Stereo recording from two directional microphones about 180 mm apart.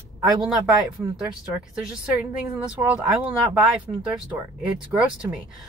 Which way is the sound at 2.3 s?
5° right (ahead or behind).